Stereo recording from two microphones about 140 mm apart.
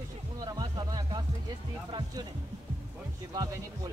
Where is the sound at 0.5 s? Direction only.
30° right (ahead or behind).